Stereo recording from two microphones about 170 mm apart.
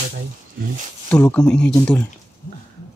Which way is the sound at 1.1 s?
10° left (ahead or behind).